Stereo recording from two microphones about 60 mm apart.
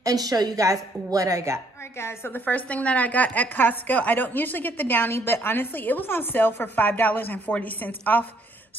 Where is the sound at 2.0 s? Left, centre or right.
Left.